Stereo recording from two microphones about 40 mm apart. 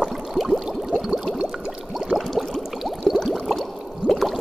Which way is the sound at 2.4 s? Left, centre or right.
Centre.